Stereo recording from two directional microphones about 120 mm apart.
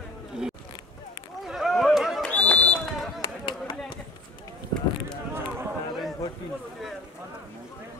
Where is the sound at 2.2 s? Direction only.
10° left (ahead or behind).